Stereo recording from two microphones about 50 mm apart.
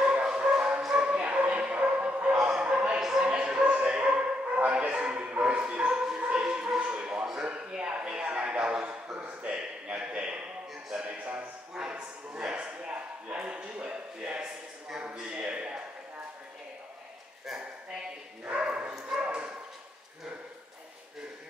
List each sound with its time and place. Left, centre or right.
0.0 s music: centre
0.9 s dog: right
2.6 s music: right
3.0 s music: centre
3.3 s a sound: right
18.5 s bow-wow: right
18.9 s dog: centre
19.2 s dog: right